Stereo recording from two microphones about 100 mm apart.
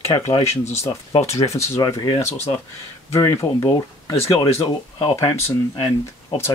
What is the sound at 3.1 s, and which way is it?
Speech, 30° left (ahead or behind).